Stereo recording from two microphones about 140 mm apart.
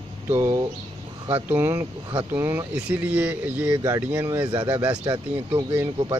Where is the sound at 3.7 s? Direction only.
30° right (ahead or behind).